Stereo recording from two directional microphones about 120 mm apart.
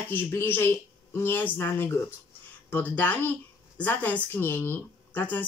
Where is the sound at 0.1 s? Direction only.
20° left (ahead or behind).